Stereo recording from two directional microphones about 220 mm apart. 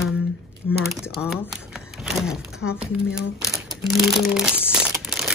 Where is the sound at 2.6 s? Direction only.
70° left (ahead or behind).